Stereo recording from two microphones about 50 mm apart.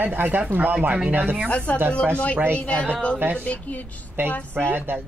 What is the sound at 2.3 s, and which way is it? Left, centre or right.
Speech, right.